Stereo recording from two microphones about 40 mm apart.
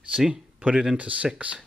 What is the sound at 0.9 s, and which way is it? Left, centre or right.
Speech, right.